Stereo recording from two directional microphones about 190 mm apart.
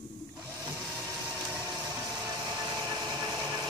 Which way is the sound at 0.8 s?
Centre (ahead or behind).